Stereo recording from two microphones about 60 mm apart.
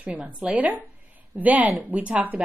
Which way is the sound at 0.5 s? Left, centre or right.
Right.